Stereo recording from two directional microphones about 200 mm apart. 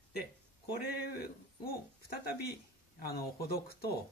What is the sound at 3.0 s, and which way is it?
Speech, 50° left (ahead or behind).